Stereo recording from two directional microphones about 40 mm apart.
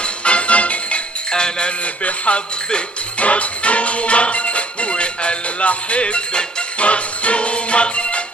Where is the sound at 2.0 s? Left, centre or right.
Left.